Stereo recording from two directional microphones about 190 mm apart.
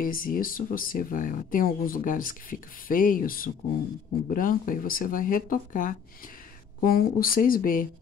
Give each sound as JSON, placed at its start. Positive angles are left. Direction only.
{"t": 0.0, "sound": "speech", "side_deg": 45}